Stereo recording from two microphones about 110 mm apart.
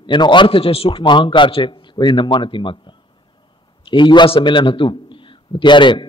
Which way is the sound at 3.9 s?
45° left (ahead or behind).